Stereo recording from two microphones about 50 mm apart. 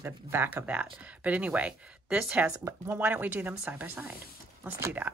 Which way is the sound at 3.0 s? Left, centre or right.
Right.